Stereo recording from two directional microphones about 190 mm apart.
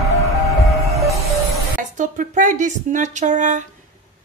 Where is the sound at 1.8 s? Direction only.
45° right (ahead or behind).